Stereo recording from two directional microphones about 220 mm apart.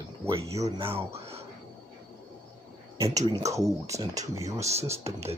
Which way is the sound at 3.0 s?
15° right (ahead or behind).